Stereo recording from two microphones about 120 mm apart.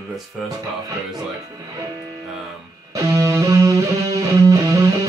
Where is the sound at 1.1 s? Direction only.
30° right (ahead or behind).